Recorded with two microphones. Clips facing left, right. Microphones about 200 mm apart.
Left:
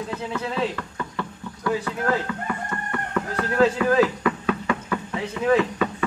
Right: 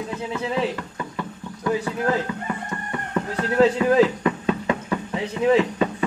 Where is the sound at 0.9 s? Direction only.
15° right (ahead or behind).